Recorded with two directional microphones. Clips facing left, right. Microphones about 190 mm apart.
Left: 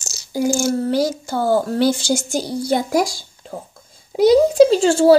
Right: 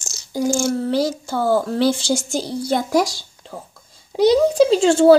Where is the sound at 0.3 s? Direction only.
5° left (ahead or behind).